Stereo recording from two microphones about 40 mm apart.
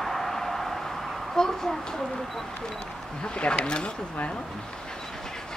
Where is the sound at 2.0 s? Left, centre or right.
Centre.